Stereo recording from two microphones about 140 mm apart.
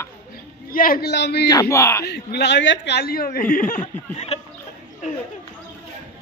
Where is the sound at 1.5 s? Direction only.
25° left (ahead or behind).